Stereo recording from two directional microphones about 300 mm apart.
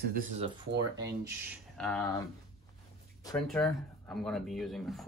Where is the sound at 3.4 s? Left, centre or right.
Centre.